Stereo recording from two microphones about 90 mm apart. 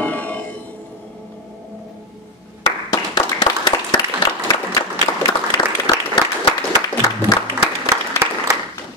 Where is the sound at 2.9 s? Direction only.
50° left (ahead or behind).